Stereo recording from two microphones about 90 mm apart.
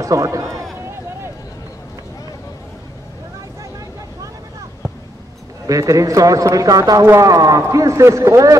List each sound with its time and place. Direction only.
0.0 s a man's voice: 35° right (ahead or behind)
5.7 s a man's voice: 40° right (ahead or behind)